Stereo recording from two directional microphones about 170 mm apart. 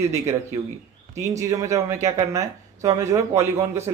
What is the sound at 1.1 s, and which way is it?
Speech, 15° right (ahead or behind).